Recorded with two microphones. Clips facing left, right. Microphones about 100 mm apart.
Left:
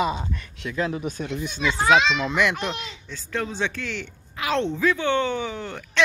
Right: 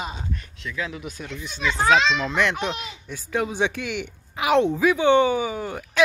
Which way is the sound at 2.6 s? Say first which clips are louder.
Right 2 dB; 5° right (ahead or behind).